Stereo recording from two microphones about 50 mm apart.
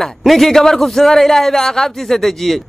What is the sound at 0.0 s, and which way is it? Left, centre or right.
A man's voice, centre.